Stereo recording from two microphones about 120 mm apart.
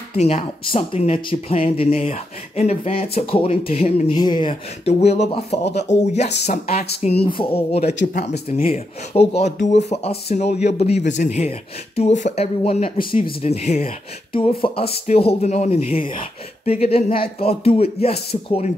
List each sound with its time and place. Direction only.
0.1 s speech: 65° left (ahead or behind)
2.1 s speech: 70° left (ahead or behind)
4.1 s speech: 40° left (ahead or behind)
4.8 s speech: 60° left (ahead or behind)
7.2 s speech: 50° left (ahead or behind); by 12.4 s 75° left (ahead or behind)
12.6 s speech: 55° left (ahead or behind)